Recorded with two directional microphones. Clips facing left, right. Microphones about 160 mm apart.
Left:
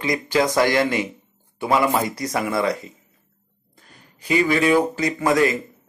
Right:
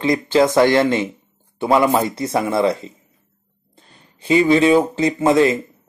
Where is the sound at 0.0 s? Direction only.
25° right (ahead or behind).